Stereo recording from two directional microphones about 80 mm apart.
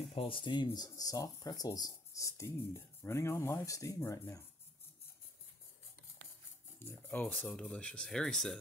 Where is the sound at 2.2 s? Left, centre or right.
Left.